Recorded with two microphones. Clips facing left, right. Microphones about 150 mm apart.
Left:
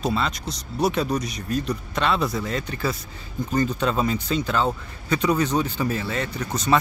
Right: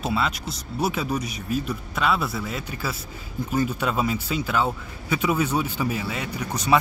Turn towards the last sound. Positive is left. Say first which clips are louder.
# even
turn(degrees=-10)  # may be behind; listen again after turning